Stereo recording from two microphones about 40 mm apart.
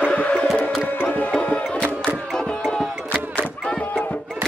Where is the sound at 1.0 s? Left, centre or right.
Left.